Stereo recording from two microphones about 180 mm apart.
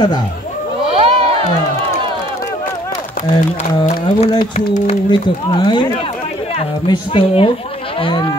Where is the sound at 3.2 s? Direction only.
45° left (ahead or behind).